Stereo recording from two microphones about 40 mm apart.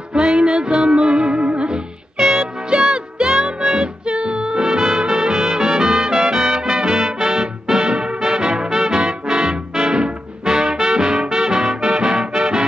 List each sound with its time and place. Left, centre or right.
0.1 s music: right